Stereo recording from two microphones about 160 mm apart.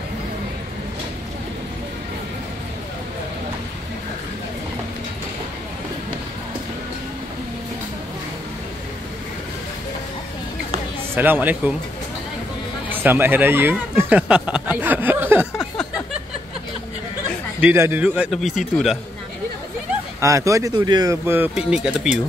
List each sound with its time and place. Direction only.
11.1 s a man's voice: 10° right (ahead or behind)
12.9 s speech: 10° right (ahead or behind)
17.6 s a man's voice: 15° right (ahead or behind)
20.2 s speech: 20° right (ahead or behind)